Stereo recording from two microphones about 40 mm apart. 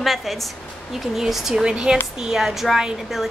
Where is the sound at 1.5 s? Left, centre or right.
Right.